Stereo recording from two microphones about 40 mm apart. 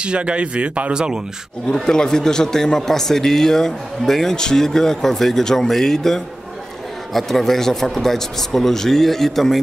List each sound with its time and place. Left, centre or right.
0.0 s speech: right
0.9 s speech: centre
1.7 s a man's voice: centre